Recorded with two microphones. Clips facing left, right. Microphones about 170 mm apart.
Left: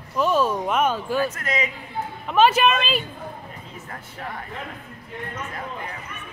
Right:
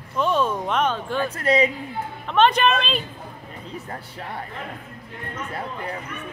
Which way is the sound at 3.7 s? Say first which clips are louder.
Right 4 dB; 35° right (ahead or behind).